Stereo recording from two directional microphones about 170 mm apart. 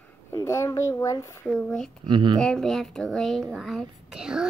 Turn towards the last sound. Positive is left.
turn(degrees=-5)  # may be behind; listen again after turning